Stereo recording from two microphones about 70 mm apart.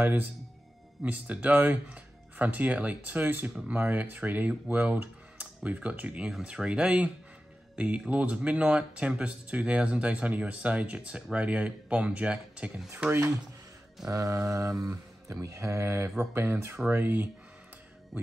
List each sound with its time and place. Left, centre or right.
1.0 s speech: right
14.0 s mantra: right
16.9 s speech: right